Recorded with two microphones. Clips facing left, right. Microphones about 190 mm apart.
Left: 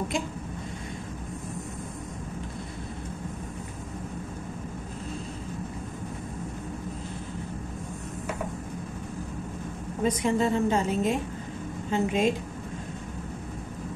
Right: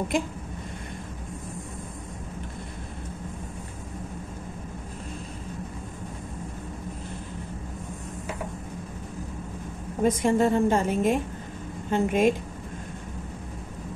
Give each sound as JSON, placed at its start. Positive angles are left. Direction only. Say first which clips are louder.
{"t": 10.0, "sound": "a woman's voice", "louder": "right 3 dB", "side_deg": -50}